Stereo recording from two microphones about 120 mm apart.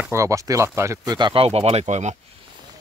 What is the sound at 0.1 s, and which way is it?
Speech, 25° right (ahead or behind).